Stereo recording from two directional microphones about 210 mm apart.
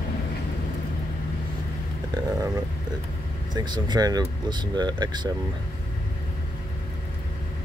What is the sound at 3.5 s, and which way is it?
Speech, 20° right (ahead or behind).